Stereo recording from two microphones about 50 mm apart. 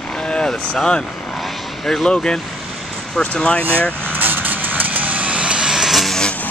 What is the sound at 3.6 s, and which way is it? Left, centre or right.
Speech, right.